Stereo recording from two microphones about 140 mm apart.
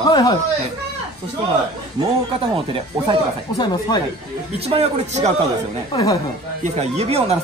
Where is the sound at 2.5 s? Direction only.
40° right (ahead or behind).